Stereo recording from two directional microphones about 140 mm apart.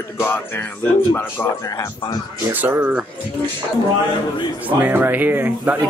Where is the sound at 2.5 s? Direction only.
10° right (ahead or behind).